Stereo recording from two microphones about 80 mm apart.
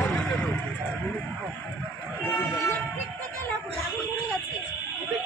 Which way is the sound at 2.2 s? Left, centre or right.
Left.